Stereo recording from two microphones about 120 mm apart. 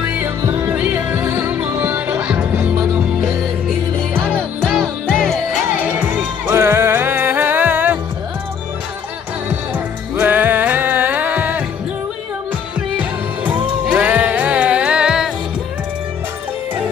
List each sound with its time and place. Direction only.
0.0 s music: 15° right (ahead or behind)
4.2 s music: 5° left (ahead or behind)
5.7 s music: 15° right (ahead or behind)
10.1 s music: 15° right (ahead or behind)
12.9 s music: 15° right (ahead or behind)